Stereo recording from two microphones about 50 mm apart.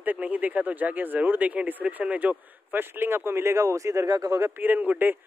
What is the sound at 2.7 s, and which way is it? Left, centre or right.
Speech, right.